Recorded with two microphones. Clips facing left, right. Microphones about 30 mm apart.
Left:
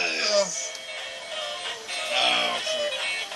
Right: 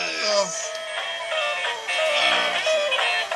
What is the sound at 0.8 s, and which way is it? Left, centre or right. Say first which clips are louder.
Music: right 7 dB; right.